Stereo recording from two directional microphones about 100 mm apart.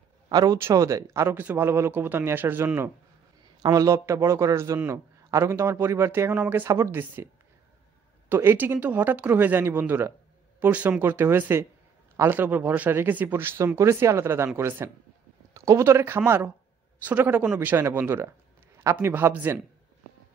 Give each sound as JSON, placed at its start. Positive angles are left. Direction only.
{"t": 0.3, "sound": "a man's voice", "side_deg": -40}
{"t": 3.6, "sound": "a man's voice", "side_deg": -35}
{"t": 8.3, "sound": "a man's voice", "side_deg": -20}
{"t": 15.5, "sound": "a man's voice", "side_deg": -30}